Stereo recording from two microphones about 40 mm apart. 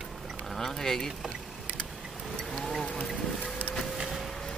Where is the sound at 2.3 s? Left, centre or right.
Centre.